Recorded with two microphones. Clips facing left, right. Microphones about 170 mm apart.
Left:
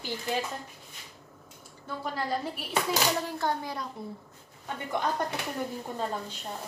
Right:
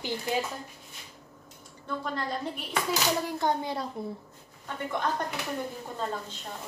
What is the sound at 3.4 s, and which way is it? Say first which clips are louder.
Speech: right 3 dB; 20° right (ahead or behind).